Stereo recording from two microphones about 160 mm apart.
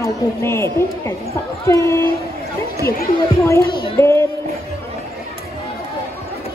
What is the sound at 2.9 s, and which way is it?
Speech, 70° left (ahead or behind).